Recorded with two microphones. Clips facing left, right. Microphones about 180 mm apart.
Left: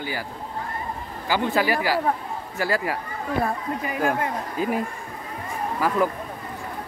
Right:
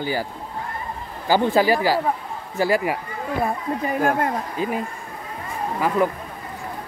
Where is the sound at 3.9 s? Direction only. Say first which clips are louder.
Right 3 dB; 40° right (ahead or behind).